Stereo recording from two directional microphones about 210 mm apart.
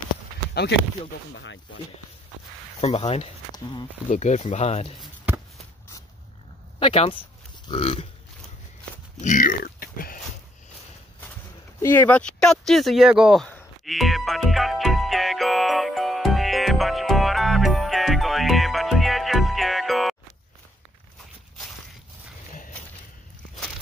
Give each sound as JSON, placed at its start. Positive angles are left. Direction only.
{"t": 1.3, "sound": "speech", "side_deg": 60}
{"t": 2.8, "sound": "speech", "side_deg": 30}
{"t": 4.1, "sound": "speech", "side_deg": 35}
{"t": 6.8, "sound": "speech", "side_deg": 30}
{"t": 9.2, "sound": "speech", "side_deg": 40}
{"t": 11.8, "sound": "a sound", "side_deg": 10}